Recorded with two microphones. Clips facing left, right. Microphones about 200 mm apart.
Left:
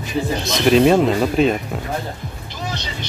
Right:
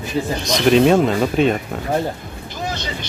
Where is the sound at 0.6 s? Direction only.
Centre (ahead or behind).